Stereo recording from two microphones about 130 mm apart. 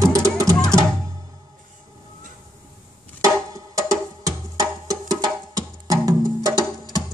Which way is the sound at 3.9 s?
25° right (ahead or behind).